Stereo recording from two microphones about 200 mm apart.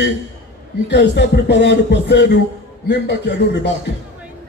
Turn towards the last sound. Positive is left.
turn(degrees=60)  # may be behind; listen again after turning